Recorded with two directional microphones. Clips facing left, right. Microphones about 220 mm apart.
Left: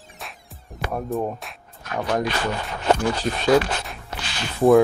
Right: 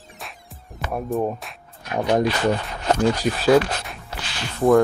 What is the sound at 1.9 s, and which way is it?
Speech, 20° right (ahead or behind).